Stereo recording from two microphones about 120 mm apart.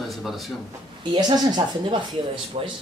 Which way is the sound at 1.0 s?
40° right (ahead or behind).